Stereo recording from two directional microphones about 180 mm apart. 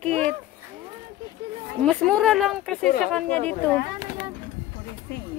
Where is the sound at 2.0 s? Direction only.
Centre (ahead or behind).